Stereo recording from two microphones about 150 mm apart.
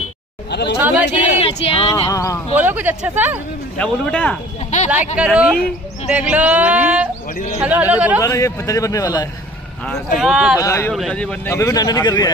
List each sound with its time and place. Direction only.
0.5 s speech: 90° left
0.7 s speech: 10° right (ahead or behind)
1.3 s female singing: 40° left (ahead or behind)
2.0 s a man's voice: 20° left (ahead or behind)
2.6 s speech: 10° right (ahead or behind)
3.7 s speech: 10° left (ahead or behind)
4.6 s a sound: 55° left (ahead or behind)
5.1 s speech: 5° right (ahead or behind)
8.2 s a man's voice: 20° left (ahead or behind)
10.1 s speech: 5° right (ahead or behind)
10.6 s speech: 20° left (ahead or behind)
10.9 s speech: centre (ahead or behind)
11.5 s a man's voice: 20° left (ahead or behind)